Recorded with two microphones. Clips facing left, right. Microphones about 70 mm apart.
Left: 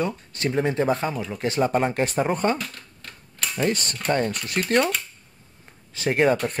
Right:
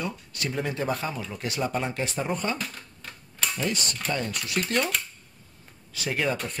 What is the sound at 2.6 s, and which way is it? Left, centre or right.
Typewriter, centre.